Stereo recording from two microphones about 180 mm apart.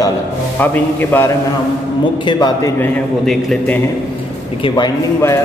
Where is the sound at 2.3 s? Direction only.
20° left (ahead or behind); by 3.8 s centre (ahead or behind).